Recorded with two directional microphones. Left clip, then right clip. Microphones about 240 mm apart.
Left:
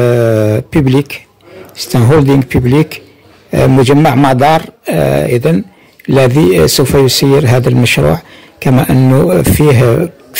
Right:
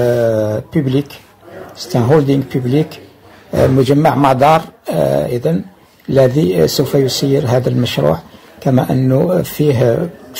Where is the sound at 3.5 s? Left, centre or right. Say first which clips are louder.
Left 4 dB; left.